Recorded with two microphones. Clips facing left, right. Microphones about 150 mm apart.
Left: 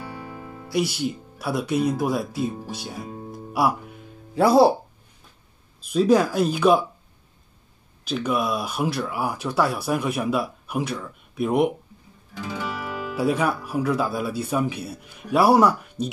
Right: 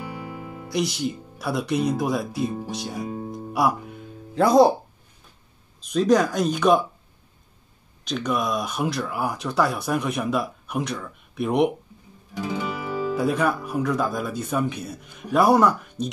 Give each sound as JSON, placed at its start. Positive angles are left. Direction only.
{"t": 0.1, "sound": "music", "side_deg": -15}
{"t": 0.7, "sound": "speech", "side_deg": 5}
{"t": 5.8, "sound": "speech", "side_deg": 5}
{"t": 8.0, "sound": "speech", "side_deg": 5}
{"t": 12.4, "sound": "music", "side_deg": -15}
{"t": 13.1, "sound": "speech", "side_deg": 5}